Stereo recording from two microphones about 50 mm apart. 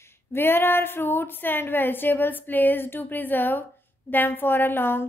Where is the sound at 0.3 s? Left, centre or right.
Left.